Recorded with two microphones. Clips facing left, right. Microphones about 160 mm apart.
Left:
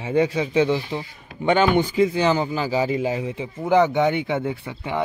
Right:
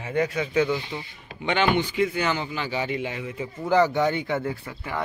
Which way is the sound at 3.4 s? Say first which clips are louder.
Left 2 dB; 20° left (ahead or behind).